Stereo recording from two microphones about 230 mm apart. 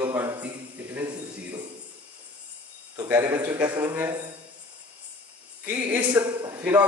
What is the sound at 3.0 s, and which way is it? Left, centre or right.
A man's voice, centre.